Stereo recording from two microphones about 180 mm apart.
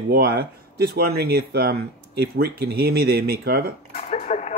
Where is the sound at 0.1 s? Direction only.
60° right (ahead or behind).